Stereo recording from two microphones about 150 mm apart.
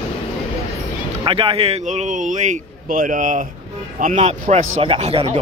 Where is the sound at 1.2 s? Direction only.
35° right (ahead or behind).